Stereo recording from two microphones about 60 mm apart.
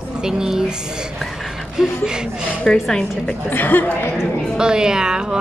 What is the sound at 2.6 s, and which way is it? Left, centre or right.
Speech, centre.